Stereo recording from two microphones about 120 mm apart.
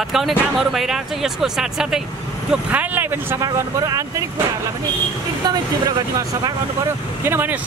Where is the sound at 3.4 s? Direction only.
30° right (ahead or behind).